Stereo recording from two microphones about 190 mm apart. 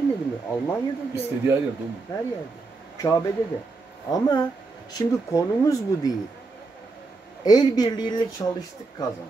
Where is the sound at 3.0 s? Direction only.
15° left (ahead or behind).